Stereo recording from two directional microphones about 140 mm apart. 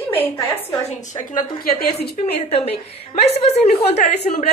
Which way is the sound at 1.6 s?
90° left.